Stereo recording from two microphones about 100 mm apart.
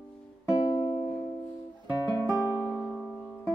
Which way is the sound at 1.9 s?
35° left (ahead or behind).